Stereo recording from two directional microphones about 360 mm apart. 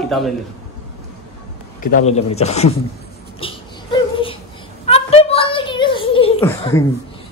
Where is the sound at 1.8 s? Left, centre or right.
Centre.